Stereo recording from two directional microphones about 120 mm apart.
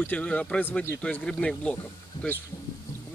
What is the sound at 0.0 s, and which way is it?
Speech, 15° left (ahead or behind).